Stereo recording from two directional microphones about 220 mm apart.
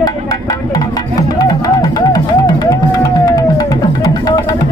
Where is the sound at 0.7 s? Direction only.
15° left (ahead or behind).